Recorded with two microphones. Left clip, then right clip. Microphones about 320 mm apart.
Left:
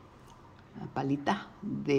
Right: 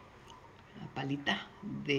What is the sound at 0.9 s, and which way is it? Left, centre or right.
Speech, centre.